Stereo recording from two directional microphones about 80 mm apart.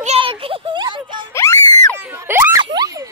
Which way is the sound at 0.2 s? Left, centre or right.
Right.